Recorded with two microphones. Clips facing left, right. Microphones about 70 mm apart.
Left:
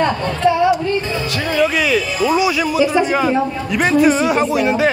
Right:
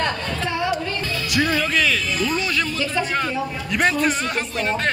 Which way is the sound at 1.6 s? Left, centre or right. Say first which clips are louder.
Left 6 dB; centre.